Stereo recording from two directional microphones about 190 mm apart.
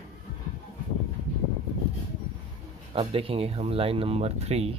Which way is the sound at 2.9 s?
30° right (ahead or behind).